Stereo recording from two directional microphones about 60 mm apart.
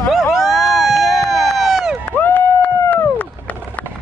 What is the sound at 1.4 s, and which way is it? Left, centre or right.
Run, centre.